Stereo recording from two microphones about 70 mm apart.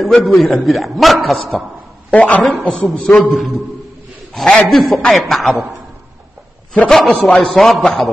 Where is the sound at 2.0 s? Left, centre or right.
Centre.